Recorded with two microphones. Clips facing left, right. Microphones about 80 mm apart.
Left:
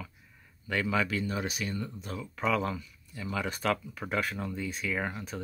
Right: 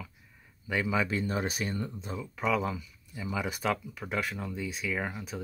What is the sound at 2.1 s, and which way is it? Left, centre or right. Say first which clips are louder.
Speech: even; centre.